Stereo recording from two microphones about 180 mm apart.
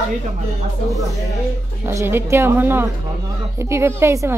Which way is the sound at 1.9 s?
15° right (ahead or behind).